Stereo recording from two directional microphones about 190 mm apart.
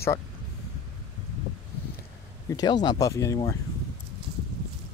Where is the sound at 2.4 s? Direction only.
20° left (ahead or behind).